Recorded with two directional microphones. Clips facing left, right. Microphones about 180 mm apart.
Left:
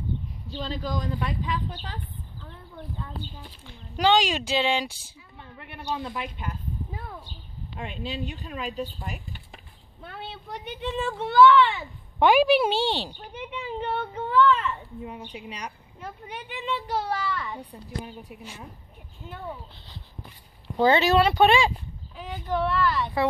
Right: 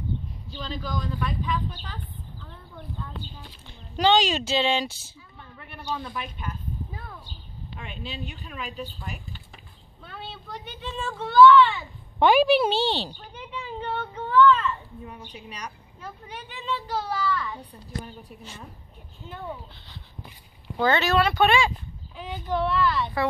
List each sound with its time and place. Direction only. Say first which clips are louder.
0.5 s speech: left 3 dB; 35° left (ahead or behind)
3.6 s speech: right 1 dB; 10° left (ahead or behind)
7.7 s speech: left 4 dB; 30° left (ahead or behind)
10.8 s speech: left 4 dB; 20° left (ahead or behind)
12.2 s speech: even; 10° left (ahead or behind)
18.0 s speech: left 2 dB; 10° left (ahead or behind)
20.7 s speech: left 3 dB; 30° left (ahead or behind)
22.1 s speech: even; 5° left (ahead or behind)